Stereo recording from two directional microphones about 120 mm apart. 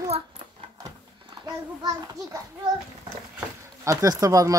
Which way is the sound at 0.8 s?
35° right (ahead or behind).